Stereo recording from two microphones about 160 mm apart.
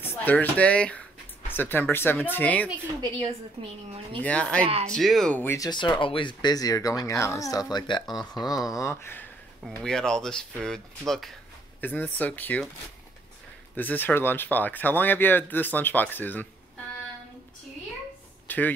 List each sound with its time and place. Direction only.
0.0 s speech: 10° left (ahead or behind)
3.0 s a woman's voice: 30° right (ahead or behind)
4.2 s speech: 10° left (ahead or behind)
5.7 s speech: 30° left (ahead or behind)
9.7 s speech: 5° left (ahead or behind)
13.7 s speech: 10° left (ahead or behind)
18.5 s a sound: 10° left (ahead or behind)